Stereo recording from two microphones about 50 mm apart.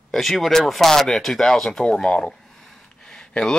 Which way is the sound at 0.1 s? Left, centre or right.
Centre.